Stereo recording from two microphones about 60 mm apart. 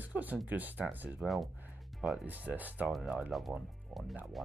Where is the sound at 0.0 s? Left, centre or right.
Right.